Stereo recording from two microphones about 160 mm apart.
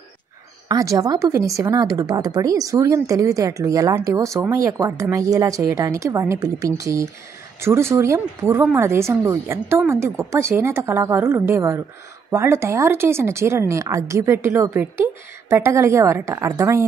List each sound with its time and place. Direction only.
0.7 s a woman's voice: 25° right (ahead or behind)